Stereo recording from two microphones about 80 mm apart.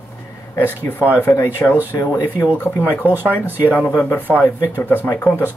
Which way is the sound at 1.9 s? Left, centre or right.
Left.